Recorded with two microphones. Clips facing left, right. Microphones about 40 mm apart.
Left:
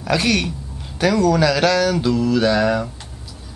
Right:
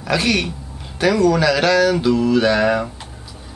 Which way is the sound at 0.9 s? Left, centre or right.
Centre.